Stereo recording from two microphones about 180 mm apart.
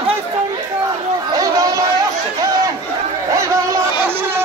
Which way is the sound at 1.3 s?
20° right (ahead or behind).